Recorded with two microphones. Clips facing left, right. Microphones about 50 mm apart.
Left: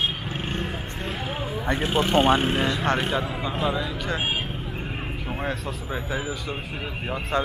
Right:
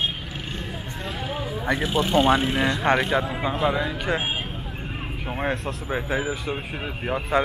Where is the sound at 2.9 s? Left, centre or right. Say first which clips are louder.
Right 3 dB; right.